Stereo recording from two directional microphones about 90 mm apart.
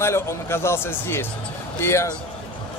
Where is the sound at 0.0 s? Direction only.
30° left (ahead or behind).